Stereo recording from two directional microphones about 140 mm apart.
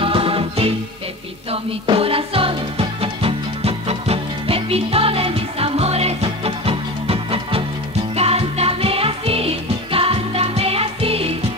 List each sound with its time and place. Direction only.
0.0 s music: 40° right (ahead or behind)